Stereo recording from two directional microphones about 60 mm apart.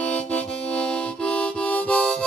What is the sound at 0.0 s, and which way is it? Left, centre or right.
Harmonica, left.